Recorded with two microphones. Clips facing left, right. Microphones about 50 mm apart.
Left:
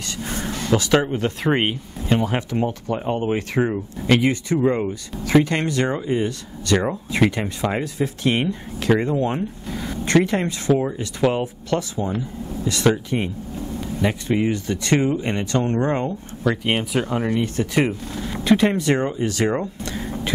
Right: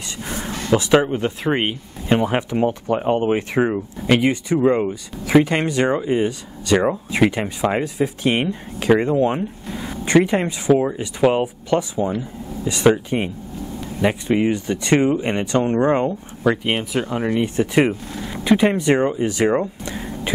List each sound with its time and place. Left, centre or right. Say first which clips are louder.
0.2 s a sound: even; right
1.2 s speech: even; centre
2.0 s speech: right 3 dB; right
16.6 s speech: even; centre
18.1 s speech: even; centre